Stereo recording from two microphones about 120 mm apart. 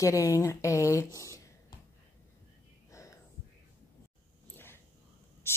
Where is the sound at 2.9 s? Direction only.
25° left (ahead or behind).